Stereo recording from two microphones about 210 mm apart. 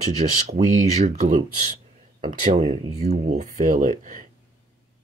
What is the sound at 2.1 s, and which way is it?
Speech, 30° right (ahead or behind).